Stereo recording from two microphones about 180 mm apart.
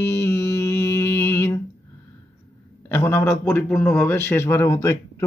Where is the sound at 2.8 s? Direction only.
10° left (ahead or behind).